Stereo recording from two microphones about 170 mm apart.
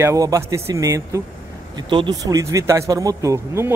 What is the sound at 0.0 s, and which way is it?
Speech, 20° right (ahead or behind).